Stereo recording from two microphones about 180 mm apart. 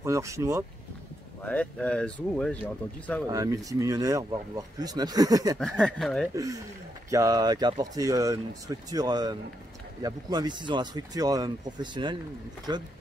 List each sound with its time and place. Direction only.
0.0 s speech: 15° right (ahead or behind)
1.4 s speech: 10° left (ahead or behind)
3.3 s speech: 20° right (ahead or behind)
5.6 s speech: 5° left (ahead or behind)
6.3 s speech: 20° right (ahead or behind)